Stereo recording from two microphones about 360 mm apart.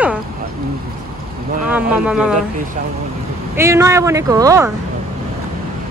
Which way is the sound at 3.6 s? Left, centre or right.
Centre.